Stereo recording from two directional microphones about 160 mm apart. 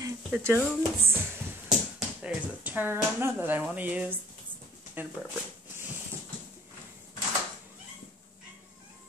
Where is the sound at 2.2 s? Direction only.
10° right (ahead or behind).